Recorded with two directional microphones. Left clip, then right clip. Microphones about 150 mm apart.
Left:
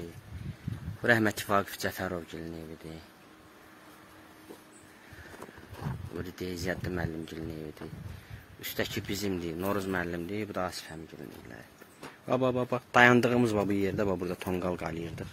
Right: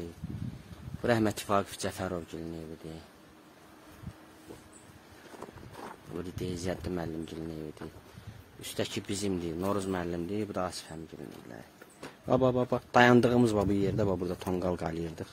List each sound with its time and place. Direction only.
1.0 s a man's voice: 15° right (ahead or behind)
5.8 s a sound: 15° left (ahead or behind)
6.1 s a man's voice: 20° right (ahead or behind)
12.3 s a man's voice: 30° right (ahead or behind)
13.6 s speech: 15° right (ahead or behind)
14.6 s speech: 30° right (ahead or behind)